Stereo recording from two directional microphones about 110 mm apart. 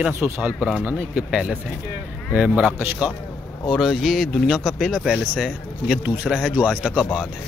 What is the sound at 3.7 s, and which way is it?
Speech, centre (ahead or behind).